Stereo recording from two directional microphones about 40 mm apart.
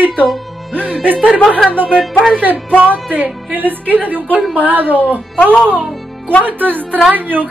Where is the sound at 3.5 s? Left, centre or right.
Right.